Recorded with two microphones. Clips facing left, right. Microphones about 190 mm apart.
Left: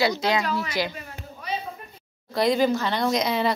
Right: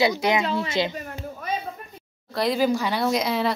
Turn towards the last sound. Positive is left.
turn(degrees=0)  # may be behind; listen again after turning